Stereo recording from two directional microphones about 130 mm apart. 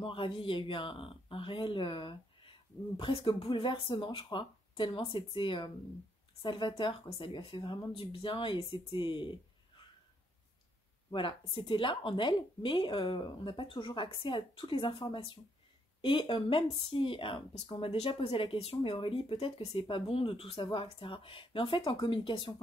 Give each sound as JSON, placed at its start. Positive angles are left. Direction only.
{"t": 0.0, "sound": "a woman's voice", "side_deg": 45}
{"t": 11.1, "sound": "a woman's voice", "side_deg": 40}